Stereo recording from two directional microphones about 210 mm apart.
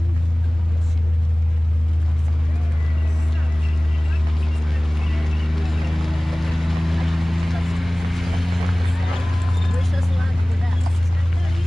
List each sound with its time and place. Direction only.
4.6 s boat: centre (ahead or behind)